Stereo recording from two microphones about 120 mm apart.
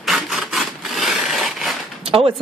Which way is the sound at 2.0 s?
50° right (ahead or behind).